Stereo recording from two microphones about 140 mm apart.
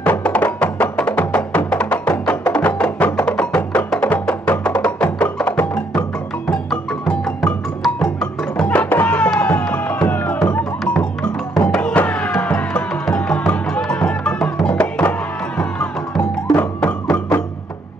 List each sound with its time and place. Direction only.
0.0 s music: 10° left (ahead or behind)